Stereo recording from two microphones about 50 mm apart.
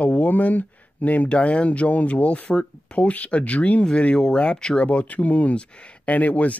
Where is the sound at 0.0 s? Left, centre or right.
Left.